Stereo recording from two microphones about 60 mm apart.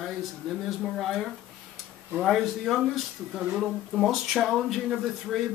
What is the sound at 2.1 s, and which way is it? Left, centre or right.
Speech, centre.